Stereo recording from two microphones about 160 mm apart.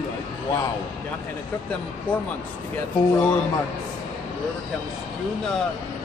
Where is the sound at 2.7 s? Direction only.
10° left (ahead or behind).